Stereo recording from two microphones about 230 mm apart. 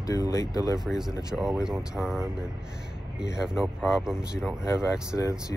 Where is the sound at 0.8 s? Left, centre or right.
Centre.